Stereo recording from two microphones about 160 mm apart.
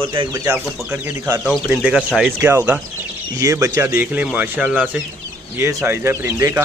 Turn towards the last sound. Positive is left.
turn(degrees=-15)  # may be behind; listen again after turning